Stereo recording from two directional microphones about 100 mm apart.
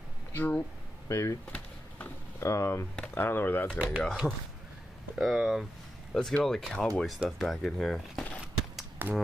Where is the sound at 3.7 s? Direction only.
10° right (ahead or behind).